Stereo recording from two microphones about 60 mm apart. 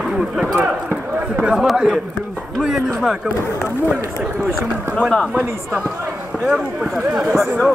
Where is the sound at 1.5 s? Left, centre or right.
Centre.